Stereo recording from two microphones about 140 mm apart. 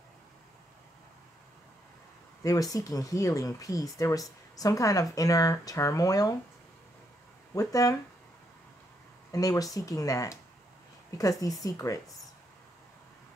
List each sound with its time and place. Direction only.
2.4 s speech: 25° left (ahead or behind)
7.5 s speech: 25° left (ahead or behind)
9.3 s speech: 25° left (ahead or behind)